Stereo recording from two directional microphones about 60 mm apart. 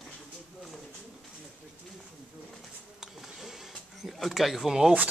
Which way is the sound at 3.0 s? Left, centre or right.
Centre.